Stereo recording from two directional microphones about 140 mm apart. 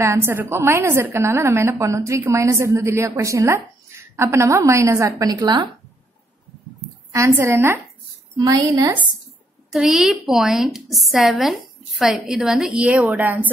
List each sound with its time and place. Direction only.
0.0 s a woman's voice: 20° right (ahead or behind)
7.2 s a woman's voice: 20° right (ahead or behind)
9.7 s a woman's voice: 5° right (ahead or behind)